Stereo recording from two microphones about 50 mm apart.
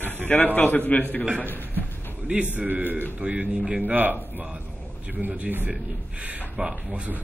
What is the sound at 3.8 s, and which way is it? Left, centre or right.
Speech, right.